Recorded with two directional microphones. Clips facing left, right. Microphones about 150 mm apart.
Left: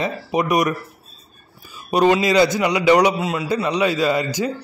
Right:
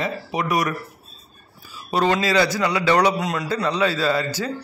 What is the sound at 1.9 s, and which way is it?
A man's voice, 15° left (ahead or behind).